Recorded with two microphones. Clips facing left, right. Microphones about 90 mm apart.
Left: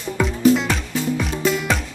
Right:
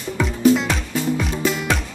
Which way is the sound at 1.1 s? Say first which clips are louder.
Left 1 dB; centre (ahead or behind).